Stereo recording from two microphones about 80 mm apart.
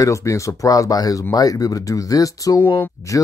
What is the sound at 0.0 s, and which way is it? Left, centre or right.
Speech, left.